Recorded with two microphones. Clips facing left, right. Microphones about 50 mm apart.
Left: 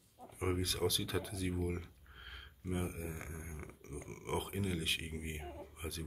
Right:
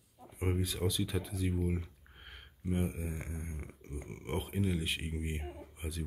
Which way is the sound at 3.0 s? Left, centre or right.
Right.